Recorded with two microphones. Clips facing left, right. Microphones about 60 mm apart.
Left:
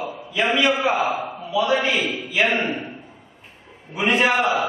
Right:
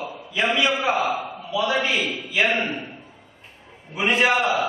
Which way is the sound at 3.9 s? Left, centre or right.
Centre.